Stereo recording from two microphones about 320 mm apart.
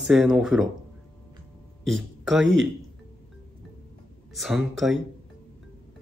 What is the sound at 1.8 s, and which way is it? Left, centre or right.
Speech, centre.